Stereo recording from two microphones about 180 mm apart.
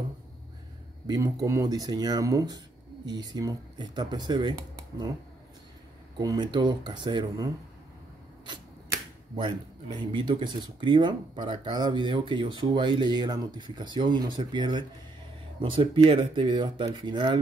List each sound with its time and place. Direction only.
1.0 s speech: 20° right (ahead or behind)
6.1 s speech: 25° right (ahead or behind)
9.9 s speech: 25° right (ahead or behind)